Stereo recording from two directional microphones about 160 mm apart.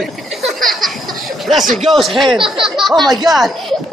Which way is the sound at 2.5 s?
Centre (ahead or behind).